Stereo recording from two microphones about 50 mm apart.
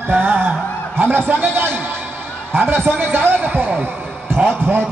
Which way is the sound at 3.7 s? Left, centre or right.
Right.